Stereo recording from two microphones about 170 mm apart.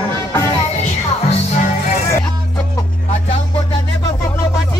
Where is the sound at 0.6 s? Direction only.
40° left (ahead or behind).